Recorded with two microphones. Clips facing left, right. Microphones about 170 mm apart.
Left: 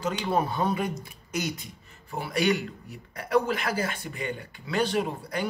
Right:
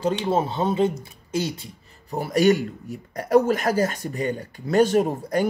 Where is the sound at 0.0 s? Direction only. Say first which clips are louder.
Right 4 dB; 25° right (ahead or behind).